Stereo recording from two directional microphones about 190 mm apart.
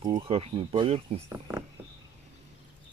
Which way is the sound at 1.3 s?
10° right (ahead or behind).